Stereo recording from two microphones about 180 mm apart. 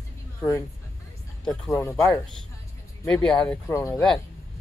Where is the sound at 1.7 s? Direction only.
15° left (ahead or behind).